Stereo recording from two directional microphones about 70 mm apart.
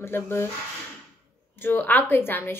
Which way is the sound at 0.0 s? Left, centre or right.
Left.